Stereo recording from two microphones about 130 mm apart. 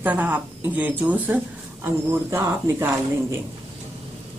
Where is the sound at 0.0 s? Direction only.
10° right (ahead or behind).